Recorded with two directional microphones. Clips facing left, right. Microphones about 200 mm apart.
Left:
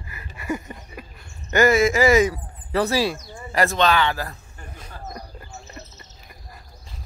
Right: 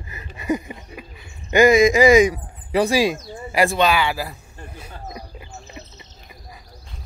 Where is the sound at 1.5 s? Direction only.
15° right (ahead or behind).